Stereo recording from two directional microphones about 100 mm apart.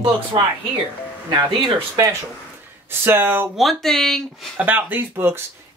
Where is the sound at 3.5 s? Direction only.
Centre (ahead or behind).